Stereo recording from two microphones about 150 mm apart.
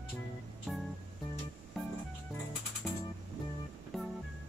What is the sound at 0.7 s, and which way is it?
Music, centre (ahead or behind).